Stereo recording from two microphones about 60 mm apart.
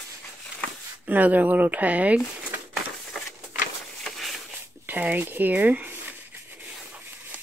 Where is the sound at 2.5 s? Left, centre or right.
Right.